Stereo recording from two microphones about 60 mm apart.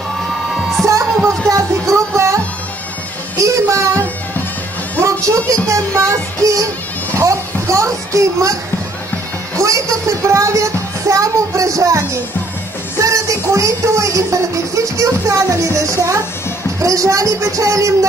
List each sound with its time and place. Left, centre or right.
0.8 s music: right
5.2 s music: right
7.2 s a sound: right
9.6 s speech: right